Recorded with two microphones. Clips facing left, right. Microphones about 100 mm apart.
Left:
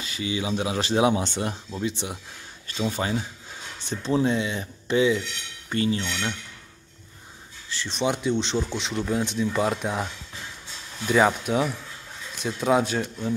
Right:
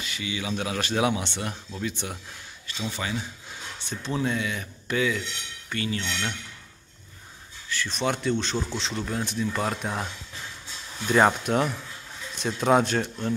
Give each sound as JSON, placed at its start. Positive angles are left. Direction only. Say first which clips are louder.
{"t": 0.0, "sound": "speech", "louder": "left 4 dB", "side_deg": 30}
{"t": 2.8, "sound": "speech", "louder": "left 5 dB", "side_deg": 35}
{"t": 7.7, "sound": "speech", "louder": "left 1 dB", "side_deg": 25}
{"t": 11.1, "sound": "speech", "louder": "even", "side_deg": 0}